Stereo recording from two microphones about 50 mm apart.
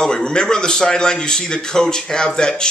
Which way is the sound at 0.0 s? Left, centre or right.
Centre.